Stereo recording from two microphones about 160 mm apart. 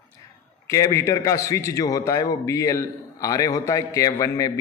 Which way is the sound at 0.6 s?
20° left (ahead or behind).